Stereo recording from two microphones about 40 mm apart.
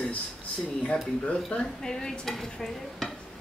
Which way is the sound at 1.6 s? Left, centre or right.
Centre.